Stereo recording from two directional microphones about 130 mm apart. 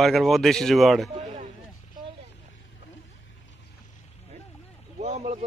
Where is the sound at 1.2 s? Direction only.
70° right (ahead or behind).